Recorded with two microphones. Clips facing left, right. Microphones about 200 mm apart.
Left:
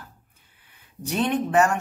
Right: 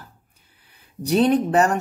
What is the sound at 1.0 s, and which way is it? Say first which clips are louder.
Speech: right 6 dB; 35° right (ahead or behind).